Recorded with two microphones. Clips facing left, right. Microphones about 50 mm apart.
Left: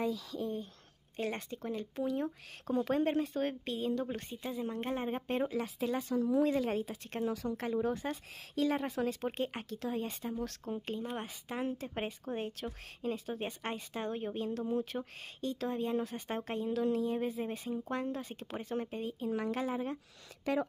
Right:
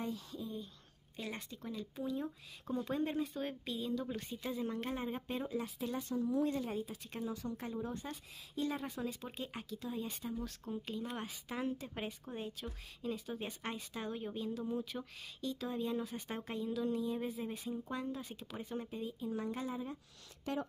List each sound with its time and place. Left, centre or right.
0.3 s speech: left
1.1 s speech: left
2.0 s speech: left
4.4 s speech: left
5.5 s speech: left
8.0 s speech: left
8.5 s speech: left
9.0 s speech: left
9.8 s speech: left
10.0 s speech: left
10.4 s speech: left
10.7 s speech: left
12.3 s speech: left
12.6 s speech: left